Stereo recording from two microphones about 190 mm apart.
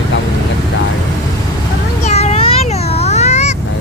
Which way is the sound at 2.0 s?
35° left (ahead or behind).